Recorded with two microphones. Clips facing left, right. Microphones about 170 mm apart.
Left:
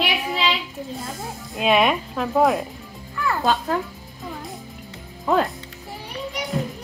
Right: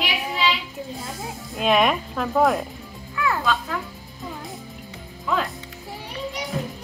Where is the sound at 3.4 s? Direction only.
40° left (ahead or behind).